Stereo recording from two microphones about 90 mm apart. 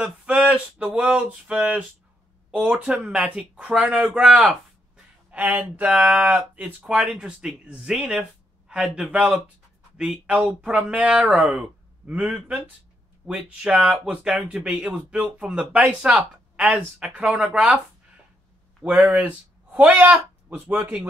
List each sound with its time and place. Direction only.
0.0 s speech: 15° right (ahead or behind)
5.3 s speech: 15° right (ahead or behind)